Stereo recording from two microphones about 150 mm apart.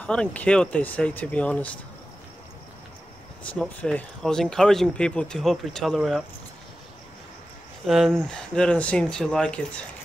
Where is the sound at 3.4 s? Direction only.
10° left (ahead or behind).